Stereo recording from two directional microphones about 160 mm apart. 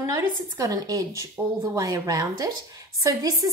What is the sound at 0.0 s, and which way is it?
A woman's voice, 15° right (ahead or behind).